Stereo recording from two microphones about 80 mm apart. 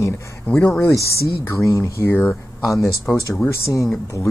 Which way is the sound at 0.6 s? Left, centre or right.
Centre.